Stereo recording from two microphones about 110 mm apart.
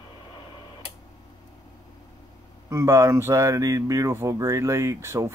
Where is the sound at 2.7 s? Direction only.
25° right (ahead or behind).